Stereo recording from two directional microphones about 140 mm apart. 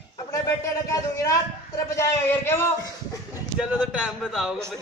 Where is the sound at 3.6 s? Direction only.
5° right (ahead or behind).